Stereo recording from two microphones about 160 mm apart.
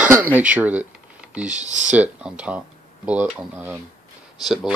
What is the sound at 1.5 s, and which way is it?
Speech, 50° right (ahead or behind).